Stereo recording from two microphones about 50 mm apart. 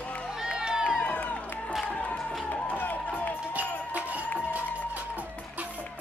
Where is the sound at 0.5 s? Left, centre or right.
Centre.